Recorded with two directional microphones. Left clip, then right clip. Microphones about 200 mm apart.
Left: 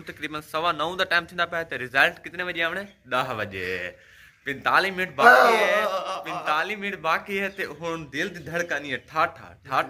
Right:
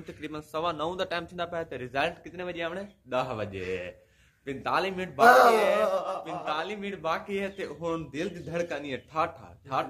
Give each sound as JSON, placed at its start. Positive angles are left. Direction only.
{"t": 0.0, "sound": "a man's voice", "side_deg": -5}
{"t": 5.2, "sound": "speech", "side_deg": -60}
{"t": 5.8, "sound": "a sound", "side_deg": -50}
{"t": 6.4, "sound": "a man's voice", "side_deg": 5}